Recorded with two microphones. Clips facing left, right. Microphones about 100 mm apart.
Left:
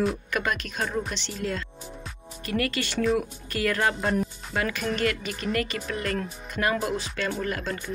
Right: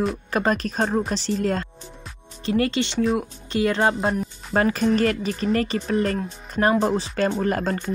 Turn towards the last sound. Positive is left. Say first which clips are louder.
# right 7 dB
turn(degrees=-45)  # may be behind; listen again after turning